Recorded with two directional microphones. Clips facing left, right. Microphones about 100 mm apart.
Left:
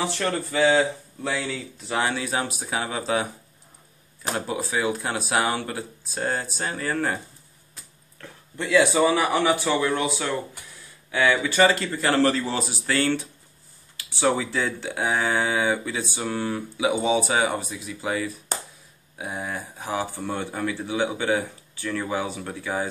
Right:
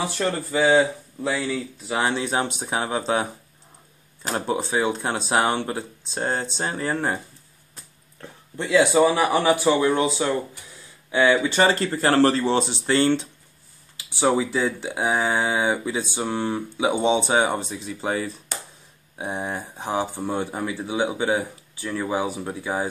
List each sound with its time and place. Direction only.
0.0 s speech: 15° right (ahead or behind)
2.0 s speech: 25° right (ahead or behind)
4.3 s speech: 25° right (ahead or behind)
8.2 s speech: 20° right (ahead or behind)
11.7 s speech: 35° right (ahead or behind)
18.5 s a sound: 40° left (ahead or behind)
19.1 s speech: 25° right (ahead or behind)